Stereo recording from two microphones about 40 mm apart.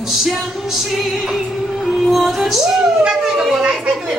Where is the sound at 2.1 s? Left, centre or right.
Centre.